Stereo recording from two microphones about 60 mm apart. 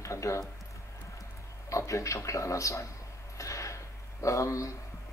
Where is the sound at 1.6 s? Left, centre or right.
Left.